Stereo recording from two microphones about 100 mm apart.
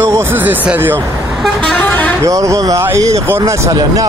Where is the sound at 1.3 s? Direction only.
5° left (ahead or behind).